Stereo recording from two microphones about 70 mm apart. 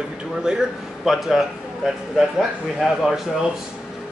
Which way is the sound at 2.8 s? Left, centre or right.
Centre.